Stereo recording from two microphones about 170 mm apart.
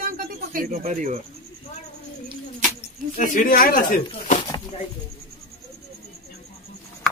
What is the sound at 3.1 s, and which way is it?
Speech, 50° left (ahead or behind).